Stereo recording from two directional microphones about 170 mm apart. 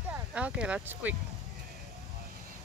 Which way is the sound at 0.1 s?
5° right (ahead or behind).